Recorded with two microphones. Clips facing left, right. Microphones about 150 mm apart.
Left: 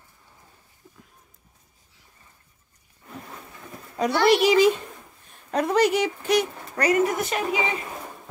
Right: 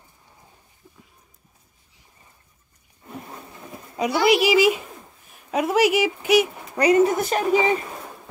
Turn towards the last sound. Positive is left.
turn(degrees=-40)  # may be behind; listen again after turning